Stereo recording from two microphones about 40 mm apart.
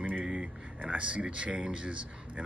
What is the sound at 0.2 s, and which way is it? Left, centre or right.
Speech, right.